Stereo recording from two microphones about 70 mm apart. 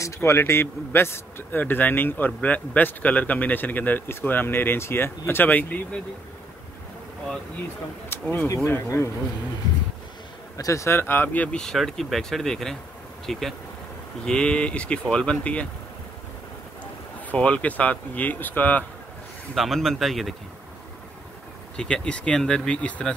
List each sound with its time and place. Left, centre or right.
0.0 s speech: left
1.6 s a man's voice: left
8.1 s speech: left
8.8 s speech: left
10.6 s speech: left
11.0 s a man's voice: left
11.4 s speech: centre
17.3 s a man's voice: centre
19.5 s speech: centre
21.7 s speech: centre